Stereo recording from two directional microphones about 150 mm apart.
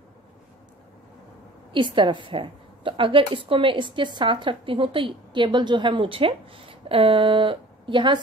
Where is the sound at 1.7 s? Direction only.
30° right (ahead or behind).